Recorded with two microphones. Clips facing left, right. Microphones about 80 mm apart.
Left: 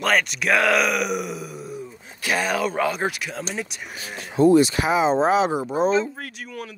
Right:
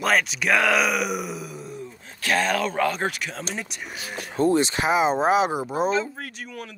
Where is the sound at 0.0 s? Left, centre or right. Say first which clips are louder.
Left 1 dB; centre.